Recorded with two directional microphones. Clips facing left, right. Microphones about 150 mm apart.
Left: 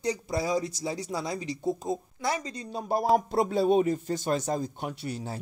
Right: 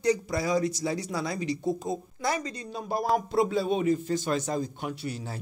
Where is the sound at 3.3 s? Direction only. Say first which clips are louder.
Left 2 dB; 45° left (ahead or behind).